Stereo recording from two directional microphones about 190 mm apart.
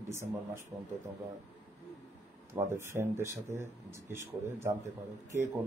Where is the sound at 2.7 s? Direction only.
15° right (ahead or behind).